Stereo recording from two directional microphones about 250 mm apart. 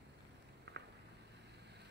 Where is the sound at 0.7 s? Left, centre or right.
Right.